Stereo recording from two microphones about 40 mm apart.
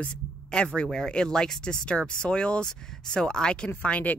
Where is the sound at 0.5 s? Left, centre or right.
Left.